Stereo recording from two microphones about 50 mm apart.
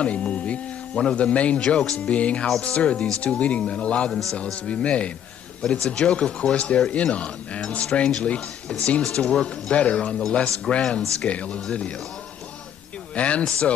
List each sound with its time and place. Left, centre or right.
0.0 s speech: left
5.6 s speech: centre
13.1 s speech: left